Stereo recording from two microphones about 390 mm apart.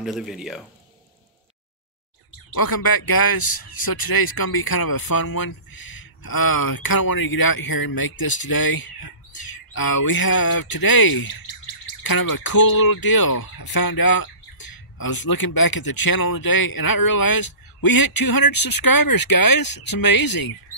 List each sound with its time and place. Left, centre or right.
0.0 s speech: centre
2.5 s a man's voice: left